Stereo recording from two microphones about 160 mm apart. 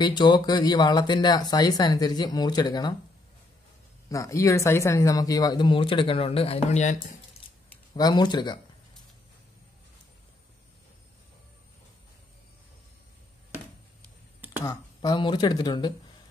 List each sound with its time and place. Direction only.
0.0 s speech: 25° left (ahead or behind)
4.1 s speech: 20° left (ahead or behind); by 7.0 s 45° left (ahead or behind)
7.4 s keys jangling: 35° left (ahead or behind)
7.9 s speech: 25° left (ahead or behind)
14.6 s speech: 25° left (ahead or behind)